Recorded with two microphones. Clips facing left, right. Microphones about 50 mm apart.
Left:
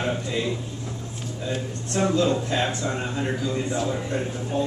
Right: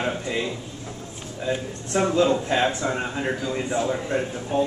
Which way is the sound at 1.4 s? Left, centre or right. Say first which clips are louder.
Right 3 dB; centre.